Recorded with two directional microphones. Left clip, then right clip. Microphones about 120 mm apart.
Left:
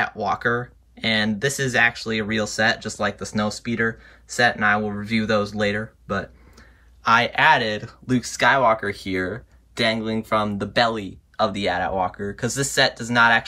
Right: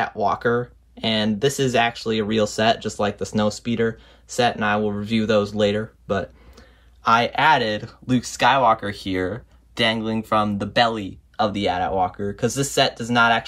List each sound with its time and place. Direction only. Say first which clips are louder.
0.0 s speech: right 1 dB; 15° right (ahead or behind)